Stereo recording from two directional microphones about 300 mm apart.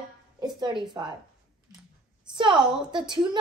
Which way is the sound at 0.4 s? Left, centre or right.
Centre.